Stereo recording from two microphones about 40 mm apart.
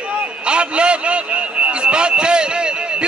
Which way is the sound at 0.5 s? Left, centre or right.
Right.